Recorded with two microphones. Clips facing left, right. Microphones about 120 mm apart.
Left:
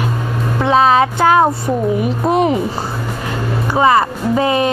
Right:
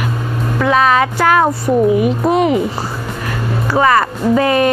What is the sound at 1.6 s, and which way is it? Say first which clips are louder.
Speech: right 4 dB; centre (ahead or behind).